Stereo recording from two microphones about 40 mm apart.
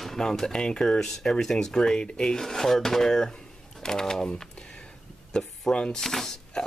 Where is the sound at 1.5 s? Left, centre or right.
Centre.